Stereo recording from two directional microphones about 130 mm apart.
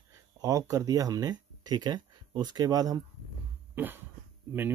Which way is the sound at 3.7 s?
15° right (ahead or behind).